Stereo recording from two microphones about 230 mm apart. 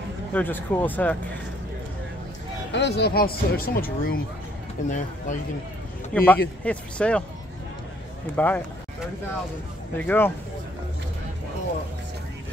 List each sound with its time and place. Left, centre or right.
0.3 s speech: centre
2.7 s speech: left
6.1 s speech: centre
8.4 s speech: centre
9.9 s speech: centre